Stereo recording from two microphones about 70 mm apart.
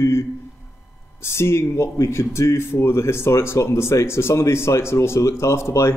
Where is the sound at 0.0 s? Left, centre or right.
Left.